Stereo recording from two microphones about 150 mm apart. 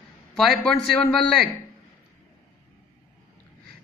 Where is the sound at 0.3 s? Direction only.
Centre (ahead or behind).